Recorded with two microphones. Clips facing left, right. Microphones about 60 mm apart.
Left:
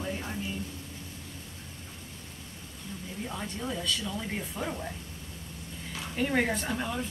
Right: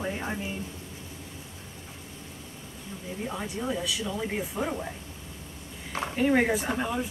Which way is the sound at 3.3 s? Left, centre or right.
Centre.